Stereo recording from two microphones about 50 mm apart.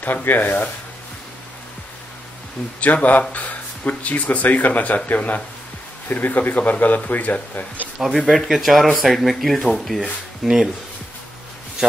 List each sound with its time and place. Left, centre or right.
0.0 s speech: left
2.8 s speech: left
8.3 s speech: centre